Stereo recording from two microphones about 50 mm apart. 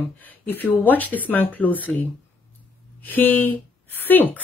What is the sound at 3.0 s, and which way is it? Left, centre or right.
Speech, left.